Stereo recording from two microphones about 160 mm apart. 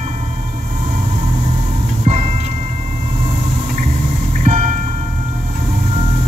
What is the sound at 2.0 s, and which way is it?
Music, 40° right (ahead or behind).